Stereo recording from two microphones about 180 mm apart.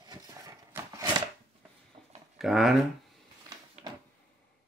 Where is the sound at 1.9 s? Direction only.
30° right (ahead or behind).